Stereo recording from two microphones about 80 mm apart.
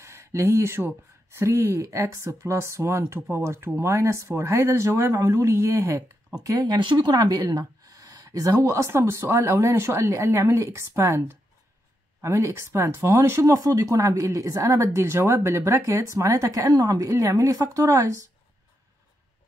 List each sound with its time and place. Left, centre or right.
0.0 s speech: right
6.8 s speech: right